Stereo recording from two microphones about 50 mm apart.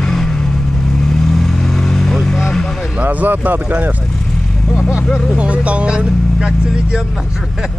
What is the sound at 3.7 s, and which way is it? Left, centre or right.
Speech, right.